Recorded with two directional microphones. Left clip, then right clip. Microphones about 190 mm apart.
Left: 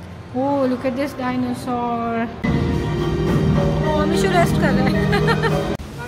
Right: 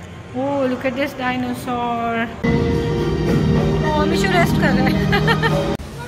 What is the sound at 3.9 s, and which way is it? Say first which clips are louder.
Speech: even; 10° left (ahead or behind).